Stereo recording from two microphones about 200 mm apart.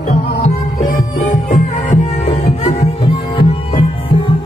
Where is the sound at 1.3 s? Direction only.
40° left (ahead or behind).